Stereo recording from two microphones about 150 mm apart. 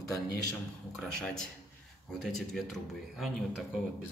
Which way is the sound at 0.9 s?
5° left (ahead or behind).